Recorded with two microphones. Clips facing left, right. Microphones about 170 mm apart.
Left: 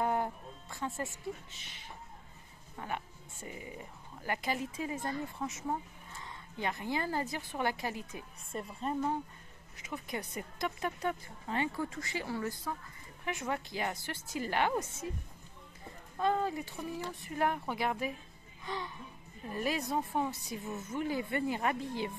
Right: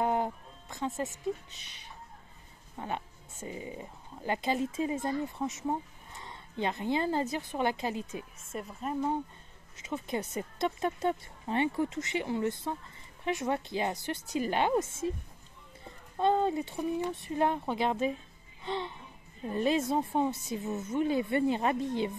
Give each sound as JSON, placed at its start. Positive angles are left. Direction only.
{"t": 0.0, "sound": "music", "side_deg": -20}
{"t": 1.2, "sound": "speech", "side_deg": -20}
{"t": 2.8, "sound": "speech", "side_deg": -20}
{"t": 8.5, "sound": "speech", "side_deg": -5}
{"t": 9.8, "sound": "speech", "side_deg": -25}
{"t": 16.2, "sound": "speech", "side_deg": -25}
{"t": 18.6, "sound": "music", "side_deg": -25}
{"t": 19.5, "sound": "speech", "side_deg": -25}